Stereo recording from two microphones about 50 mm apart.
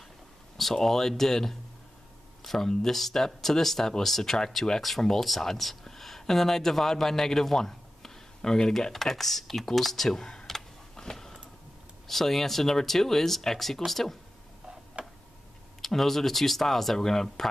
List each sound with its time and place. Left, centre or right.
0.6 s speech: centre
15.0 s tick-tock: right
15.8 s speech: centre